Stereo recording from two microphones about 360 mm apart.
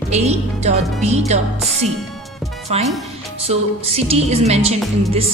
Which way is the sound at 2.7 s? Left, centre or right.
Centre.